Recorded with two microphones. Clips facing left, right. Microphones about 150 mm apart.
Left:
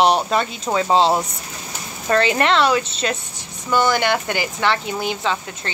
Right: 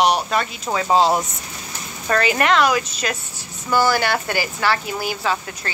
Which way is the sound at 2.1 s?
25° left (ahead or behind).